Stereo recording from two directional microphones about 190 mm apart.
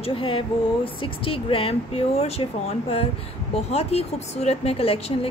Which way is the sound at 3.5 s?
35° left (ahead or behind).